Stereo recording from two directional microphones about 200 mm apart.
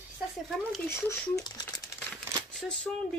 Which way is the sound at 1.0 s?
15° left (ahead or behind).